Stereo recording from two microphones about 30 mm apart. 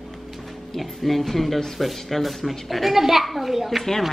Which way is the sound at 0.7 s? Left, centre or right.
Centre.